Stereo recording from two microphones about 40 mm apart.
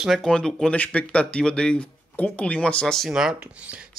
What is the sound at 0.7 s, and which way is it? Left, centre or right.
Speech, left.